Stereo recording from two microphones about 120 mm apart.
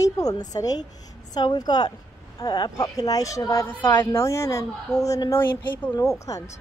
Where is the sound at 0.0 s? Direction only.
30° left (ahead or behind).